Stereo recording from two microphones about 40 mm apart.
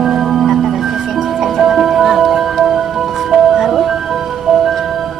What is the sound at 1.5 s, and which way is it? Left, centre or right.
Music, centre.